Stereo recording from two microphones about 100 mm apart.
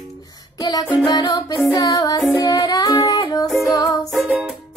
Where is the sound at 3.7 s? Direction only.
40° left (ahead or behind).